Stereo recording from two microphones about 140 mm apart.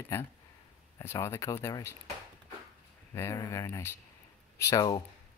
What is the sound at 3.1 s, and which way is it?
Speech, 20° left (ahead or behind).